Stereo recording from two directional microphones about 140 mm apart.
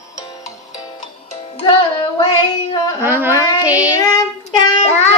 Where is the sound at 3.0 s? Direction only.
15° right (ahead or behind).